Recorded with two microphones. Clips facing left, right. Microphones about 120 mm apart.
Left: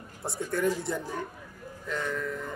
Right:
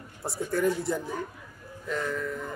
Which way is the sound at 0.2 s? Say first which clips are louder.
Right 2 dB; centre (ahead or behind).